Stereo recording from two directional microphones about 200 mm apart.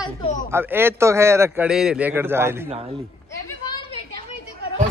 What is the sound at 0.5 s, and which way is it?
A man's voice, 10° right (ahead or behind).